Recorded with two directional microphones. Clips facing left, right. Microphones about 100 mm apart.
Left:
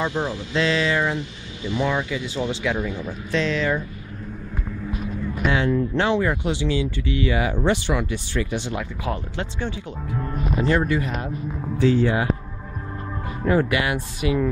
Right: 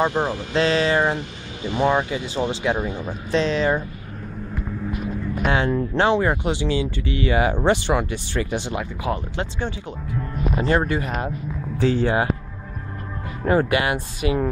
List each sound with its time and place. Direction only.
0.0 s speech: 50° right (ahead or behind); by 3.8 s 30° right (ahead or behind)
5.5 s speech: 40° right (ahead or behind)
6.4 s speech: 50° right (ahead or behind)
6.7 s speech: 40° right (ahead or behind)
8.5 s speech: 20° right (ahead or behind)
10.7 s speech: 40° right (ahead or behind)
13.5 s speech: 40° right (ahead or behind)